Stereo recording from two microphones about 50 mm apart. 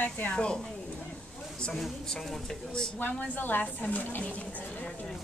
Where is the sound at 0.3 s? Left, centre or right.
Centre.